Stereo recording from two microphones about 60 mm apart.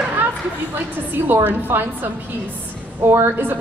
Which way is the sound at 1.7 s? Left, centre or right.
Right.